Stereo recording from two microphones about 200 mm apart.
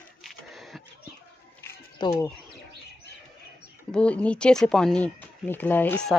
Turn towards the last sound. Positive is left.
turn(degrees=5)  # may be behind; listen again after turning